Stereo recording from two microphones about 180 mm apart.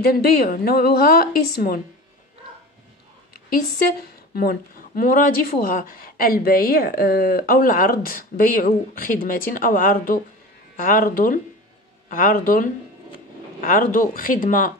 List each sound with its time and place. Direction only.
0.0 s a woman's voice: 55° left (ahead or behind)
4.4 s speech: 55° left (ahead or behind)